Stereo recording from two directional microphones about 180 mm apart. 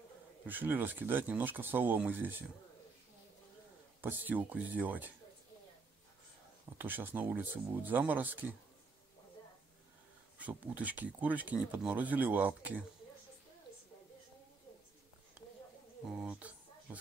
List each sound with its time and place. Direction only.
0.5 s speech: 10° right (ahead or behind)
4.0 s speech: 10° right (ahead or behind)
6.8 s speech: 10° right (ahead or behind)
10.4 s speech: 10° right (ahead or behind)
16.1 s a sound: 5° right (ahead or behind)